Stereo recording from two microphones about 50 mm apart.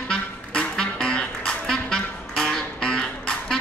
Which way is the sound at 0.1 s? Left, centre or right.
Centre.